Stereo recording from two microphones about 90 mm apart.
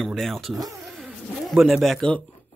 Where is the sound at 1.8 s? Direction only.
Centre (ahead or behind).